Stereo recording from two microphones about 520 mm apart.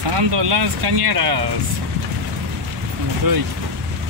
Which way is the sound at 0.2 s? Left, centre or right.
Right.